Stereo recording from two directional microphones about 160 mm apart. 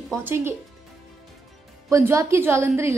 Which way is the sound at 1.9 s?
20° right (ahead or behind).